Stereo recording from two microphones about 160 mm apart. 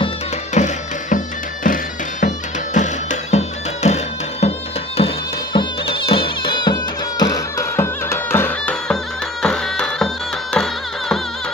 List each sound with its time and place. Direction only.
0.6 s music: 50° left (ahead or behind); by 11.1 s 5° left (ahead or behind)